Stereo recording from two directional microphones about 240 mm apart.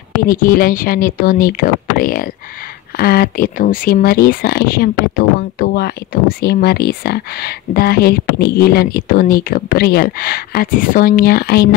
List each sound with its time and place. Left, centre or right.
0.3 s speech: left